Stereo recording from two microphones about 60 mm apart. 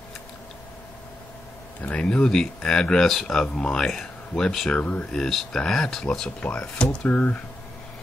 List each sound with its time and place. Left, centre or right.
1.8 s speech: left
4.7 s speech: left
5.1 s speech: centre
6.4 s speech: centre